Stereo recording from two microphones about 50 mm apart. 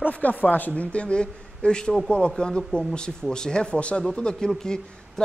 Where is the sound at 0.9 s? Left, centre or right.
Left.